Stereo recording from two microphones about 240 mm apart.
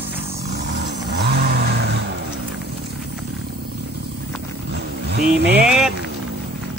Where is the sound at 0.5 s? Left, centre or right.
Right.